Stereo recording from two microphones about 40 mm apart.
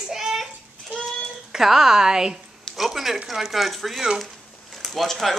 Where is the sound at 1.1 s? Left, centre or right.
Centre.